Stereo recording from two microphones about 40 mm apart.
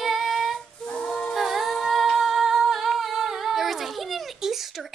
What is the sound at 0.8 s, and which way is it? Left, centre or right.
A capella, left.